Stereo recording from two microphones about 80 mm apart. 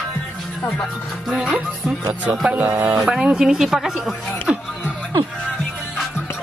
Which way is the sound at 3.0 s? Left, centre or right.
Centre.